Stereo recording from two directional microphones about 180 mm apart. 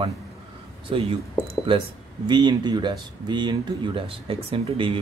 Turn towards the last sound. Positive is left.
turn(degrees=-30)  # may be behind; listen again after turning